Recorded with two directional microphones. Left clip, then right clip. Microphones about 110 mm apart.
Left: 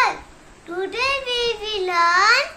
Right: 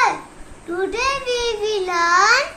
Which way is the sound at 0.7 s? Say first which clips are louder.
Right 1 dB; centre (ahead or behind).